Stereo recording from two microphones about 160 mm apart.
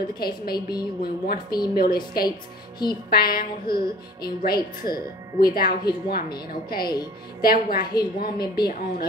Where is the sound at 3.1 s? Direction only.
70° left (ahead or behind).